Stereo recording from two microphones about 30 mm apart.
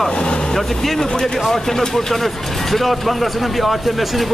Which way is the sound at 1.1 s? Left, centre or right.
Centre.